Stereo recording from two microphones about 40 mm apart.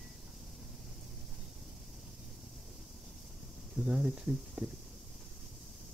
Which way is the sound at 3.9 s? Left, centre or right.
Right.